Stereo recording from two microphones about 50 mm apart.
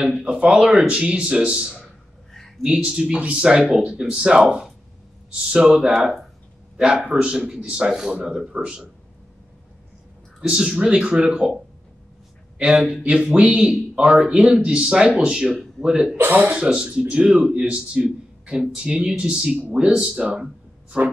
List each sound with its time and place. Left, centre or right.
0.3 s a man's voice: centre
6.8 s a man's voice: centre
10.4 s speech: centre
12.5 s a man's voice: centre
16.2 s speech: right
16.5 s speech: centre